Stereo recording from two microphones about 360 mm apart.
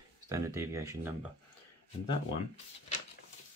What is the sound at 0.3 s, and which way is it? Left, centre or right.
Speech, centre.